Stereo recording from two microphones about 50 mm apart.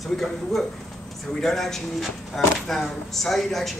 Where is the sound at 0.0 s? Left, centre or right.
Centre.